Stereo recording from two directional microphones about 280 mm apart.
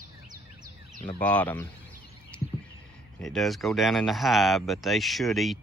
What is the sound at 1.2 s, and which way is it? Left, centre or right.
Speech, centre.